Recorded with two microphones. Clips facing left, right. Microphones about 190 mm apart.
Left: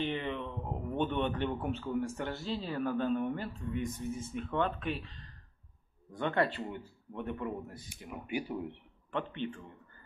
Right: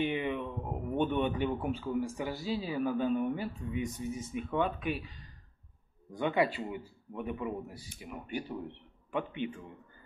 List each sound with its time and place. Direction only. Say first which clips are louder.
0.0 s a man's voice: right 3 dB; 10° right (ahead or behind)
8.1 s speech: left 2 dB; 10° left (ahead or behind)
9.1 s a man's voice: right 1 dB; 10° right (ahead or behind)